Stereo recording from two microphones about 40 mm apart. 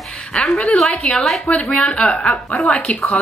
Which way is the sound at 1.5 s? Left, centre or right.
Left.